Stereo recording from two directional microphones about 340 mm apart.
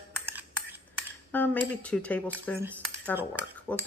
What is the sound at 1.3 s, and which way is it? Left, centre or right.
Speech, centre.